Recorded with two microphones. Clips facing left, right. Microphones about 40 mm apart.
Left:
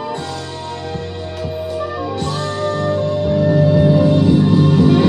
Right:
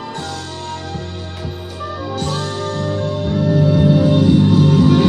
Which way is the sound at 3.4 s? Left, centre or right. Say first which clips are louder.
Even; left.